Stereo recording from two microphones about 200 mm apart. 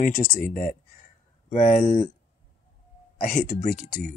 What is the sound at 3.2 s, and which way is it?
Speech, 40° left (ahead or behind).